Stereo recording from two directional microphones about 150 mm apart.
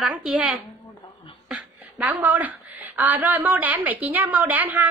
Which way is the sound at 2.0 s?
10° right (ahead or behind).